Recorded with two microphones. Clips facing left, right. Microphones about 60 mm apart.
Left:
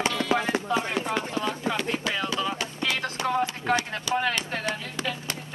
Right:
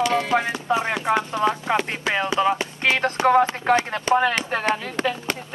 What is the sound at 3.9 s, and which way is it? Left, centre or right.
Speech, right.